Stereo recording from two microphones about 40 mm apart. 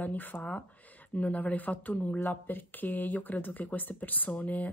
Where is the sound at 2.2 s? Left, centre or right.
Left.